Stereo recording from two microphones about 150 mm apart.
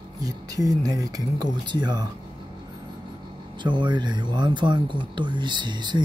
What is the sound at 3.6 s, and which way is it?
Speech, 30° right (ahead or behind).